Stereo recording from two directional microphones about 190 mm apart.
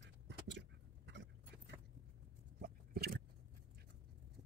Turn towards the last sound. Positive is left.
turn(degrees=-55)  # may be behind; listen again after turning